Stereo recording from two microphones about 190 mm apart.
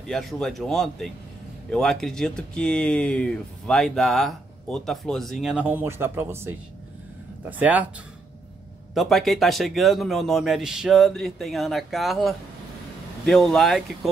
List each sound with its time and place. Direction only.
0.0 s speech: centre (ahead or behind)
8.9 s speech: centre (ahead or behind)